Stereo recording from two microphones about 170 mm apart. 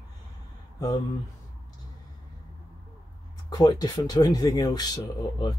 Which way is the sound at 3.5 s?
20° left (ahead or behind).